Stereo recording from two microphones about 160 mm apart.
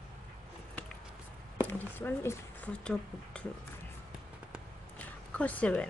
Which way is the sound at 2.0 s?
15° left (ahead or behind).